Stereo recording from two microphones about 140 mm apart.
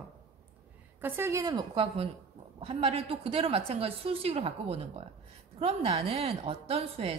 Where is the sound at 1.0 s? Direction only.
20° right (ahead or behind).